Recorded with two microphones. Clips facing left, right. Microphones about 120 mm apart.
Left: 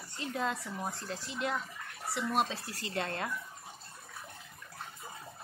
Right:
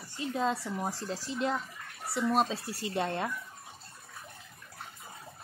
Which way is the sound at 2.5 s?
20° right (ahead or behind).